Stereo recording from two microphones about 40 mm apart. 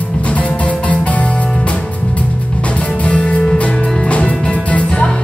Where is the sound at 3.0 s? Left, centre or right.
Left.